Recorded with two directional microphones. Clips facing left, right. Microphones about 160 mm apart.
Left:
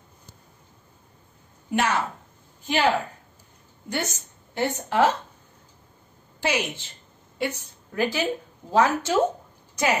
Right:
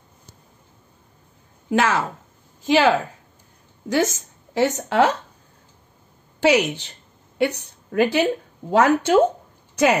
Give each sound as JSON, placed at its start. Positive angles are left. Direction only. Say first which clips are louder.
{"t": 1.7, "sound": "a woman's voice", "louder": "right 4 dB", "side_deg": -90}
{"t": 6.4, "sound": "a woman's voice", "louder": "right 9 dB", "side_deg": -80}